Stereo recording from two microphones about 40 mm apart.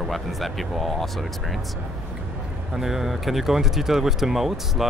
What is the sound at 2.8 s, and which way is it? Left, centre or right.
Speech, centre.